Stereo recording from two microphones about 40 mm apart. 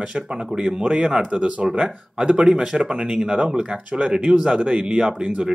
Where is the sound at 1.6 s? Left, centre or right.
Right.